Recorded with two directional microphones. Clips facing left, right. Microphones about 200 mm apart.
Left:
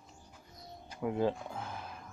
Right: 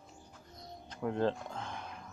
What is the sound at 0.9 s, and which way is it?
Speech, 10° left (ahead or behind).